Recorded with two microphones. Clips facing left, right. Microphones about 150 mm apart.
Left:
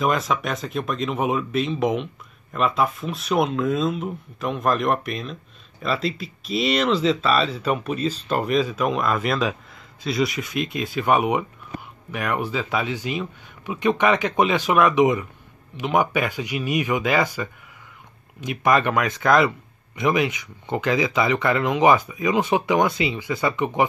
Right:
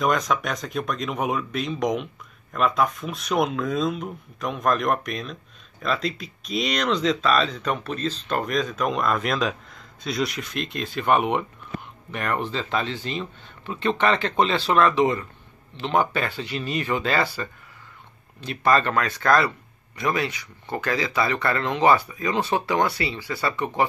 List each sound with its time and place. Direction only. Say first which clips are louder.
0.0 s speech: left 1 dB; centre (ahead or behind)